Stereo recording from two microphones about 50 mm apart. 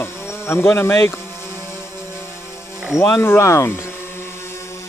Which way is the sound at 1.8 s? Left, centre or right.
Left.